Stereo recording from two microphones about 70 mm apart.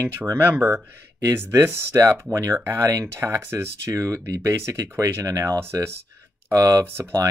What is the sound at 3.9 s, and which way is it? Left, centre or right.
Speech, right.